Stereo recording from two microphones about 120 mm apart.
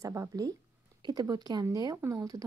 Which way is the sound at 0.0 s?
25° right (ahead or behind).